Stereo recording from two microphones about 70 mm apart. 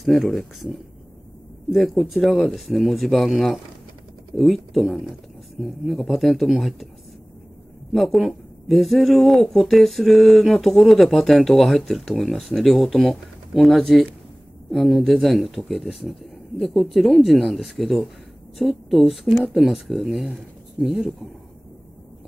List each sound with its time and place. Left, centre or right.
0.0 s speech: centre
7.9 s speech: centre